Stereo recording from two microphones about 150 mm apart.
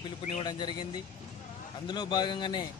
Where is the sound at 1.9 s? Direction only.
30° left (ahead or behind).